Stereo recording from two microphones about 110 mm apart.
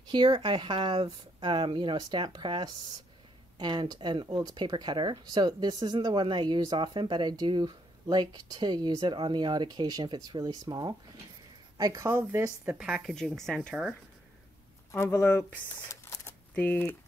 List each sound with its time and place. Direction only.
0.1 s speech: 45° right (ahead or behind)
12.1 s speech: 25° right (ahead or behind)
12.6 s speech: 5° right (ahead or behind)
13.5 s speech: 10° left (ahead or behind)
14.9 s speech: 25° left (ahead or behind)